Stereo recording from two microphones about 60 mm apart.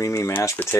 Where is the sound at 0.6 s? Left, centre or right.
Left.